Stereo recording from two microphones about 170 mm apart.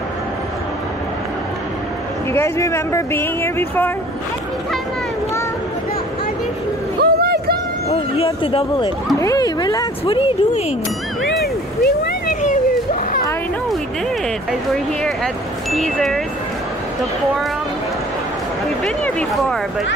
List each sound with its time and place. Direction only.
2.3 s speech: 15° left (ahead or behind)
7.0 s a sound: 70° right (ahead or behind)
7.9 s speech: 35° left (ahead or behind)
9.2 s speech: 20° left (ahead or behind)
10.0 s speech: 35° left (ahead or behind)
11.8 s vehicle: 65° left (ahead or behind)
15.7 s speech: centre (ahead or behind)
18.9 s speech: 5° left (ahead or behind)